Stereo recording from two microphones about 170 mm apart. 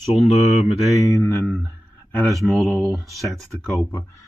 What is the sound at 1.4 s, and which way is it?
Speech, centre (ahead or behind).